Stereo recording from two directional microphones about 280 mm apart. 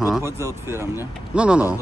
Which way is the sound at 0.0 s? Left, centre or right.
Centre.